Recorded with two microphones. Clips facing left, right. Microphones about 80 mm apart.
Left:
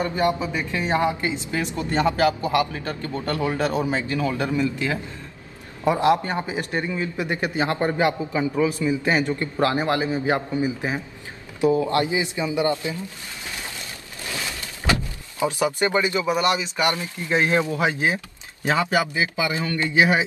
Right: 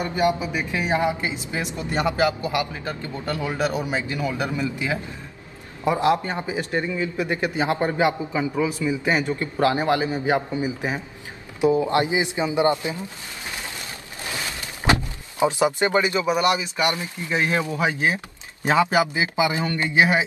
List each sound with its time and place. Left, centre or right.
0.0 s a woman's voice: centre
6.7 s speech: centre
7.5 s a woman's voice: centre
8.8 s a man's voice: centre
9.2 s a woman's voice: centre
14.9 s speech: right
17.2 s speech: left
18.6 s speech: centre